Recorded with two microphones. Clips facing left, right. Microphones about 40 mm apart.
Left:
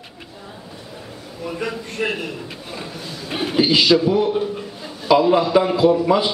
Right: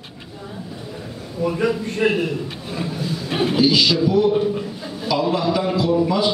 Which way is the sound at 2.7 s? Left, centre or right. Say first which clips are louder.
Right 8 dB; centre.